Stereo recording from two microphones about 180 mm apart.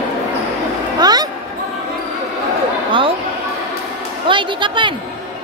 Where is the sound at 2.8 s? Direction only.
30° right (ahead or behind).